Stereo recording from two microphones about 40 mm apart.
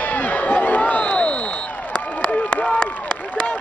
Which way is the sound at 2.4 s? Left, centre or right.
Left.